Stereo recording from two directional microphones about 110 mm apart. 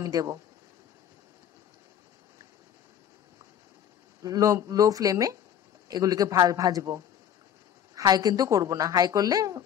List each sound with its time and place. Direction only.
0.0 s a woman's voice: 35° right (ahead or behind)
4.2 s a woman's voice: 30° right (ahead or behind)